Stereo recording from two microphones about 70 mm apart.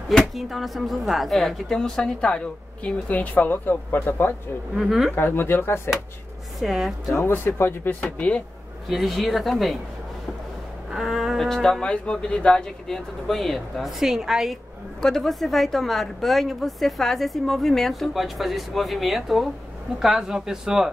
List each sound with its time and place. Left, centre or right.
0.2 s speech: centre; by 4.4 s left
4.7 s a woman's voice: centre
5.1 s speech: left
6.6 s a woman's voice: centre
7.1 s speech: left
8.8 s a woman's voice: centre
10.9 s a woman's voice: centre
15.0 s a woman's voice: centre